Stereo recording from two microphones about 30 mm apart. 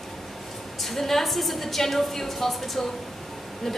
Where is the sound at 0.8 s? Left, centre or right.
Centre.